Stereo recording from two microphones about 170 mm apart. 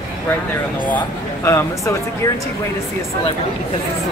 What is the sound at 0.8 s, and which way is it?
Speech, 10° left (ahead or behind).